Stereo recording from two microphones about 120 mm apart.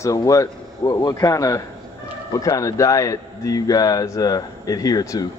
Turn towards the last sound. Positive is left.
turn(degrees=30)  # may be behind; listen again after turning